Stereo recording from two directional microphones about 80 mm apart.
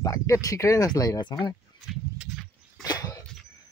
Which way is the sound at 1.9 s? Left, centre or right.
Centre.